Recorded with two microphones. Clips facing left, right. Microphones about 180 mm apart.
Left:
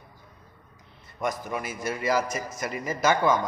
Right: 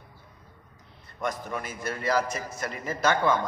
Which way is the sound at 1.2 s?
10° left (ahead or behind).